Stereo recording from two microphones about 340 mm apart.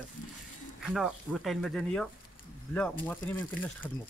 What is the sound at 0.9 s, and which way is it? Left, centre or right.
Speech, centre.